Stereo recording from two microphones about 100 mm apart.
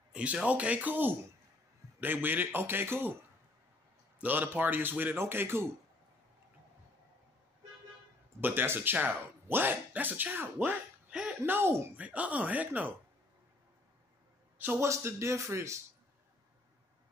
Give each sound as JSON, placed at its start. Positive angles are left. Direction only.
{"t": 0.1, "sound": "speech", "side_deg": -10}
{"t": 4.2, "sound": "speech", "side_deg": -20}
{"t": 8.4, "sound": "speech", "side_deg": -20}
{"t": 11.4, "sound": "speech", "side_deg": -20}
{"t": 12.0, "sound": "speech", "side_deg": -15}
{"t": 14.6, "sound": "speech", "side_deg": -25}